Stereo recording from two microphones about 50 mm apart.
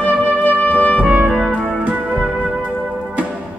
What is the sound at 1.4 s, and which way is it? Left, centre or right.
Music, right.